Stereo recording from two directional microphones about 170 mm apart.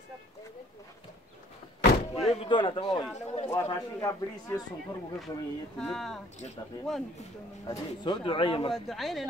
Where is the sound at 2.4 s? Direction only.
30° left (ahead or behind).